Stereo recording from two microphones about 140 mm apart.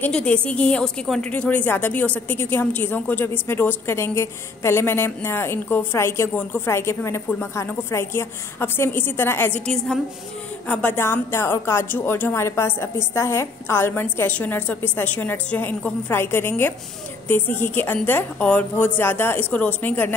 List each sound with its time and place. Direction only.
0.0 s a woman's voice: 10° left (ahead or behind)
10.7 s a woman's voice: 10° left (ahead or behind)